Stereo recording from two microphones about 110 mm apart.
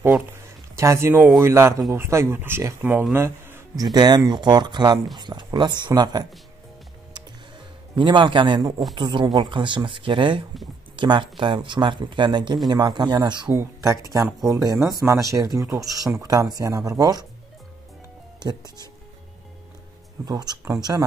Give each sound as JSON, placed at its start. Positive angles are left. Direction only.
{"t": 0.7, "sound": "speech", "side_deg": -25}
{"t": 3.1, "sound": "a sound", "side_deg": -25}
{"t": 3.7, "sound": "speech", "side_deg": -35}
{"t": 7.9, "sound": "speech", "side_deg": -45}
{"t": 13.5, "sound": "speech", "side_deg": -25}
{"t": 18.4, "sound": "speech", "side_deg": -40}
{"t": 20.2, "sound": "speech", "side_deg": -35}